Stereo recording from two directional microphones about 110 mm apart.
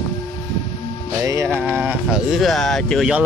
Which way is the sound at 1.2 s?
25° right (ahead or behind).